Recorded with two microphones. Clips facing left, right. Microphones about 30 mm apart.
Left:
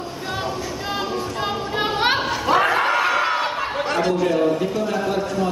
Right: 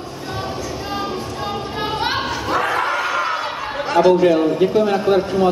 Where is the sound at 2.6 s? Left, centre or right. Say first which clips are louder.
Left 1 dB; centre.